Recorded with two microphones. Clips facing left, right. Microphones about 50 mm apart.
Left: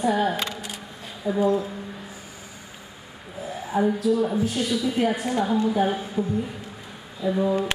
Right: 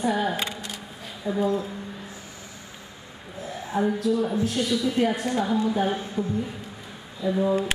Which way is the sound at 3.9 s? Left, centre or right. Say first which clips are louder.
Left 2 dB; centre.